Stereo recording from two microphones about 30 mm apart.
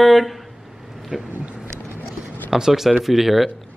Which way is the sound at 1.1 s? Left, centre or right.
Centre.